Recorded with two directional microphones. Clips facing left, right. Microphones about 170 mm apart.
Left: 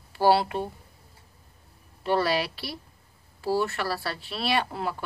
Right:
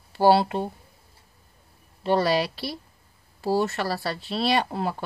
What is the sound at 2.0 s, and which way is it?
Speech, 25° right (ahead or behind).